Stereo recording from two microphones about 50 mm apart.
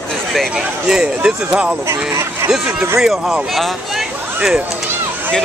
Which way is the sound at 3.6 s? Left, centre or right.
Centre.